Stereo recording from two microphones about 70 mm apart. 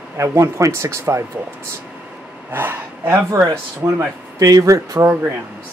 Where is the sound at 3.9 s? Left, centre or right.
Right.